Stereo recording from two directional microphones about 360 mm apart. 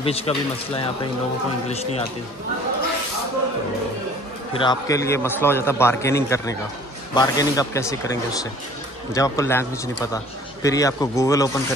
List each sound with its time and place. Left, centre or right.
0.0 s a man's voice: centre
4.6 s a man's voice: centre